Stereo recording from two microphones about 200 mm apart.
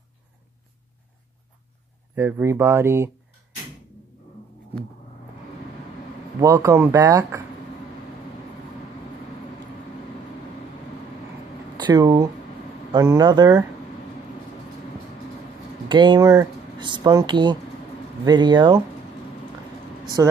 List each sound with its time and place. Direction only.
2.1 s speech: 15° right (ahead or behind)
6.4 s speech: 15° right (ahead or behind)
11.7 s speech: 20° right (ahead or behind)
15.9 s speech: 25° right (ahead or behind)
20.2 s speech: 15° right (ahead or behind)